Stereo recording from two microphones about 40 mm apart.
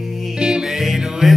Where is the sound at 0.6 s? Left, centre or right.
Centre.